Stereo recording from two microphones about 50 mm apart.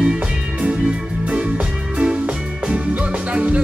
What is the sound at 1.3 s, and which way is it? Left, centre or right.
Music, right.